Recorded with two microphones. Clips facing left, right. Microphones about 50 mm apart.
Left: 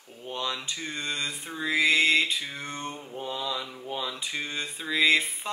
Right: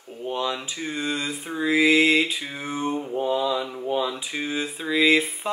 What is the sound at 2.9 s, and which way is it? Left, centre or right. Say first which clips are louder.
Mantra: right 11 dB; right.